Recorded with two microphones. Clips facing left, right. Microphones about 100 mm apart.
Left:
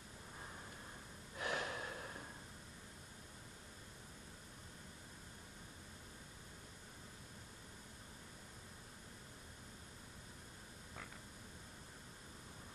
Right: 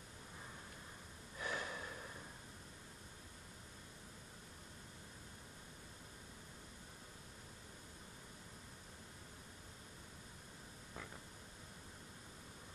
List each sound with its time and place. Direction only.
1.4 s snort: 15° left (ahead or behind)